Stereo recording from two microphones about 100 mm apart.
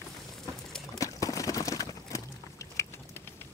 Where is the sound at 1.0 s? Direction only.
35° left (ahead or behind).